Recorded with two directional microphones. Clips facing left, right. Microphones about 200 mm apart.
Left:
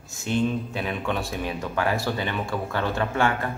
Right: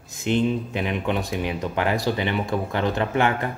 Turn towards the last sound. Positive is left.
turn(degrees=-20)  # may be behind; listen again after turning